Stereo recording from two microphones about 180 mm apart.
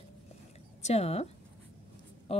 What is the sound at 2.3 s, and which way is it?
Speech, 35° left (ahead or behind).